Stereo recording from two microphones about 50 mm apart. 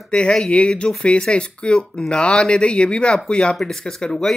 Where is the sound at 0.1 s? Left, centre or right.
Centre.